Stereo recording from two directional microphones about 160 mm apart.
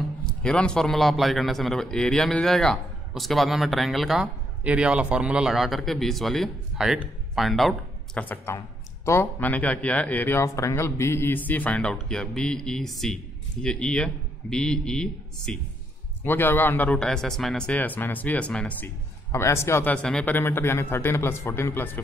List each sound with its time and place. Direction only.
0.3 s a man's voice: 5° left (ahead or behind)